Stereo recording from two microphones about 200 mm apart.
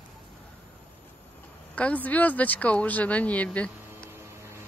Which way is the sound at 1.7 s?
5° left (ahead or behind).